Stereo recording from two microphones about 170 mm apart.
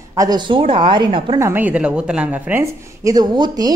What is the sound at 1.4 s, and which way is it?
A woman's voice, 10° right (ahead or behind).